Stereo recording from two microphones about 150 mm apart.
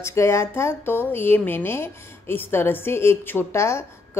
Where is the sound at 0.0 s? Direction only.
20° left (ahead or behind).